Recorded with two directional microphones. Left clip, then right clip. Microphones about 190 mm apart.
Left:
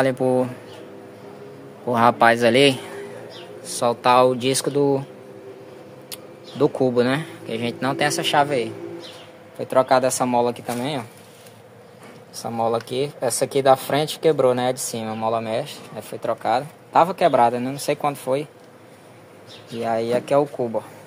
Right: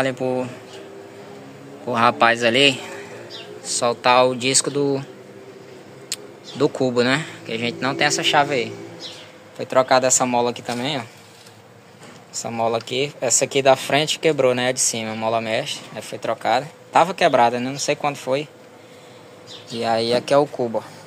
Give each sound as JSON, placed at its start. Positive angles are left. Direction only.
{"t": 0.0, "sound": "a man's voice", "side_deg": 25}
{"t": 1.9, "sound": "a man's voice", "side_deg": 20}
{"t": 6.0, "sound": "speech", "side_deg": 10}
{"t": 12.4, "sound": "speech", "side_deg": 10}
{"t": 19.8, "sound": "speech", "side_deg": 0}